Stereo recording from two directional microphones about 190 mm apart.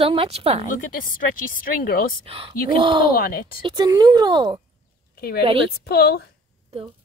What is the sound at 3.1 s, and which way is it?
Speech, 50° left (ahead or behind).